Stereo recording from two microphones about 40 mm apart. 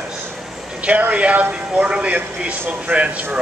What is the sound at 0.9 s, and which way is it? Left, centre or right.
A man's voice, right.